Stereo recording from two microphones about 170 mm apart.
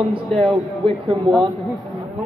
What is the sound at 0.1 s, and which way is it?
Speech, 30° right (ahead or behind).